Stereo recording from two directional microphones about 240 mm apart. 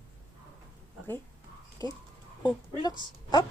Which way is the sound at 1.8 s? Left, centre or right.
Centre.